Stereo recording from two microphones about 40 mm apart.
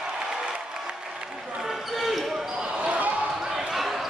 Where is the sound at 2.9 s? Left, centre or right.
Right.